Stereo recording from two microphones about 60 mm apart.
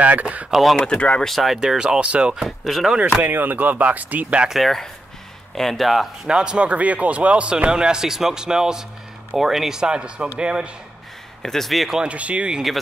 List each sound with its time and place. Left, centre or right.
0.0 s speech: right
0.5 s speech: centre
0.8 s speech: centre
1.2 s a man's voice: centre
2.4 s speech: centre
3.2 s speech: right
4.5 s speech: centre
6.2 s a man's voice: centre
11.4 s speech: centre
12.0 s speech: right